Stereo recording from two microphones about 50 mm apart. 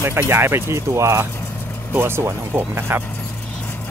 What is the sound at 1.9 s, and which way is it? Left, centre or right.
Speech, right.